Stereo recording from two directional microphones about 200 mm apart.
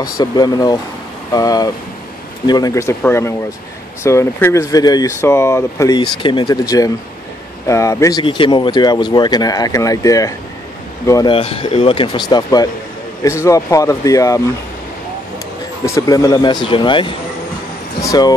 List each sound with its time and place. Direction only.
0.0 s speech: 20° left (ahead or behind)
7.6 s speech: 15° left (ahead or behind)
11.3 s speech: 30° left (ahead or behind)
15.8 s speech: 15° left (ahead or behind)